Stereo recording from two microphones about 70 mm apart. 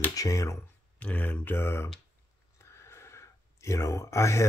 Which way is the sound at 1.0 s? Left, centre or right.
Left.